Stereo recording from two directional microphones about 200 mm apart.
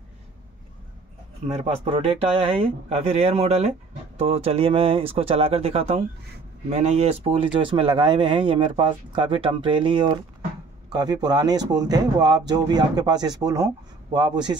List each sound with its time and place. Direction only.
1.6 s speech: 30° right (ahead or behind)